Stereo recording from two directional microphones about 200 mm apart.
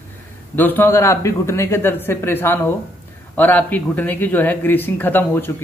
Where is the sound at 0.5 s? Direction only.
10° left (ahead or behind).